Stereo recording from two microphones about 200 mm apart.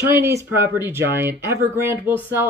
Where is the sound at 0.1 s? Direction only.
15° right (ahead or behind).